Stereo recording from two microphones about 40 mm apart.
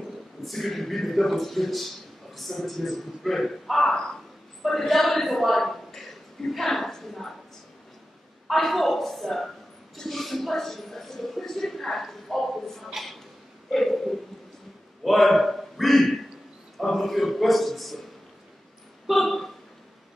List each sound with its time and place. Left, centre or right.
0.4 s a man's voice: centre
8.5 s a man's voice: centre
12.9 s a sound: centre
15.0 s a man's voice: centre
19.0 s speech: centre